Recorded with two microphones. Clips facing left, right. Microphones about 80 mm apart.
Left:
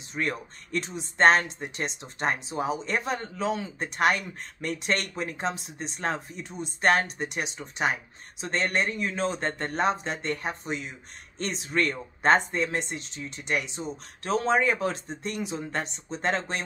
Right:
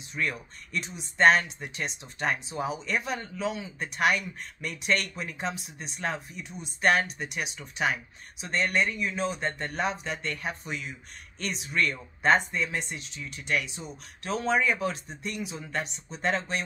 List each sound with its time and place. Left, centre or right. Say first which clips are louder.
0.1 s speech: left 2 dB; left